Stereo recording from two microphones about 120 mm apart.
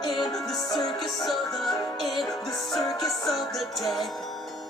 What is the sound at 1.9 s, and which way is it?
Music, centre (ahead or behind).